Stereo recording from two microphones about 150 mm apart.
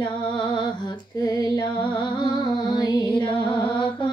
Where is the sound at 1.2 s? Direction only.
25° left (ahead or behind).